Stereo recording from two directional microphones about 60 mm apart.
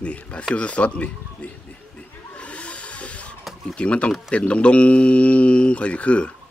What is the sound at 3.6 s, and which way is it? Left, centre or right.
Speech, centre.